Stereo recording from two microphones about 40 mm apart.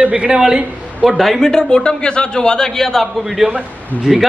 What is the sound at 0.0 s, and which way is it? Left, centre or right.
Speech, right.